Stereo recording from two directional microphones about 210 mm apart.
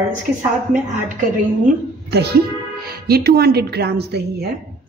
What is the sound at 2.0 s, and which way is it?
A woman's voice, 50° right (ahead or behind).